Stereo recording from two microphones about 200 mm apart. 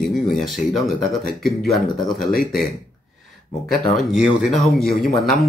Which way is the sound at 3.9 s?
Centre (ahead or behind).